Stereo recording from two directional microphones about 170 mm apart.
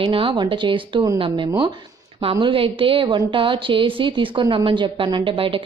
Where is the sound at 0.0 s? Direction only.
30° right (ahead or behind).